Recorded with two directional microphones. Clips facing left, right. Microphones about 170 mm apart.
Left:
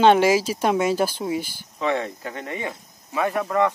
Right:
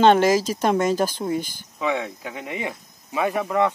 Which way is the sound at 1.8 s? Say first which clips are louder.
Left 1 dB; 5° right (ahead or behind).